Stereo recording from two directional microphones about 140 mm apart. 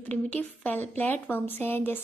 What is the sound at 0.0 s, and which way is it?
A woman's voice, 10° left (ahead or behind).